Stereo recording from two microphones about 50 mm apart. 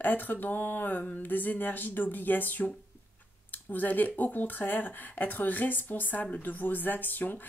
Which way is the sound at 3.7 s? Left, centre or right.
Left.